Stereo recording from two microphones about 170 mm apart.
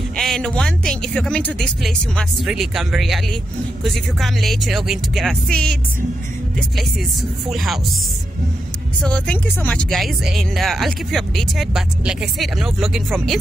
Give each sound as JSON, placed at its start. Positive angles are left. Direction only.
{"t": 0.1, "sound": "speech", "side_deg": 5}
{"t": 7.4, "sound": "speech", "side_deg": 0}
{"t": 9.0, "sound": "speech", "side_deg": 5}